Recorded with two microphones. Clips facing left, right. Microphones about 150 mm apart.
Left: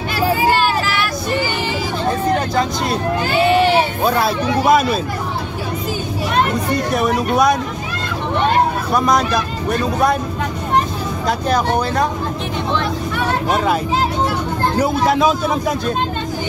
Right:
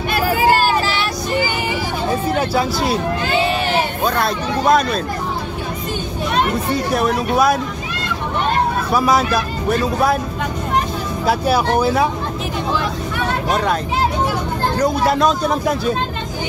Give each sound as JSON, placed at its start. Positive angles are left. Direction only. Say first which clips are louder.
{"t": 0.1, "sound": "vehicle", "louder": "right 1 dB", "side_deg": -45}
{"t": 2.5, "sound": "speech", "louder": "right 1 dB", "side_deg": -5}
{"t": 4.0, "sound": "speech", "louder": "left 2 dB", "side_deg": 5}
{"t": 6.7, "sound": "speech", "louder": "even", "side_deg": 0}
{"t": 8.9, "sound": "speech", "louder": "even", "side_deg": -5}
{"t": 11.2, "sound": "speech", "louder": "right 1 dB", "side_deg": -5}
{"t": 14.8, "sound": "speech", "louder": "even", "side_deg": 5}